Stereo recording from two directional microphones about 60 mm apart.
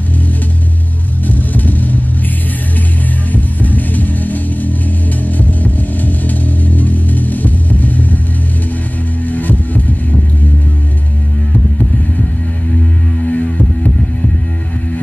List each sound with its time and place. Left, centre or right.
1.2 s vehicle: left
3.3 s music: left
5.4 s vehicle: left
9.3 s music: left
13.2 s music: left